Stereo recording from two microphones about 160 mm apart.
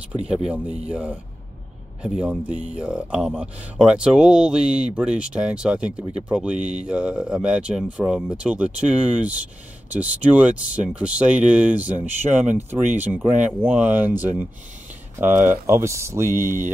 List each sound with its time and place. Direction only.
0.8 s speech: 10° right (ahead or behind)